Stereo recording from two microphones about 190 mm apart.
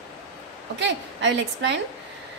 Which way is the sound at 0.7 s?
65° right (ahead or behind).